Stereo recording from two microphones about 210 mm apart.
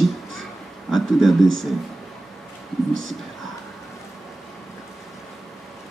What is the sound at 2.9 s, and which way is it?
Speech, 70° right (ahead or behind).